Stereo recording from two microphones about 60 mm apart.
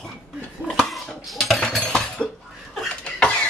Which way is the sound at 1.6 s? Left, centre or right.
Centre.